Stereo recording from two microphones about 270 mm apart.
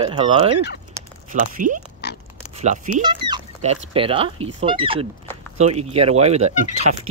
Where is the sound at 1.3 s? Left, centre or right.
Right.